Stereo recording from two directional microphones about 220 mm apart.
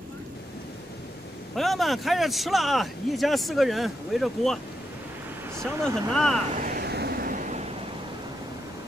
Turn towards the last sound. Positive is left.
turn(degrees=-35)  # may be behind; listen again after turning